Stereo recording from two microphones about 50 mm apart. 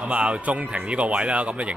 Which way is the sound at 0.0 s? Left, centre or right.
Right.